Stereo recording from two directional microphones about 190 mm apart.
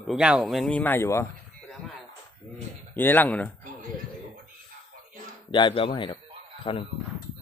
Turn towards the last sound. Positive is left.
turn(degrees=30)  # may be behind; listen again after turning